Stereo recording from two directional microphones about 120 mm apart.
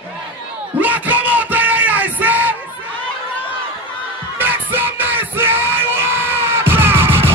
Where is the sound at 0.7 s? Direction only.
15° right (ahead or behind).